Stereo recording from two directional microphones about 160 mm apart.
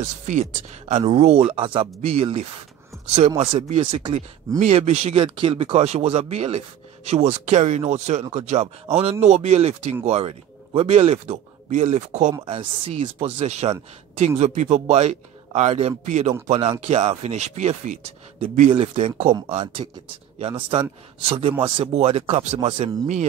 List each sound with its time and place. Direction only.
0.3 s speech: 45° right (ahead or behind)
4.6 s a man's voice: 40° right (ahead or behind)
12.4 s a man's voice: 35° right (ahead or behind)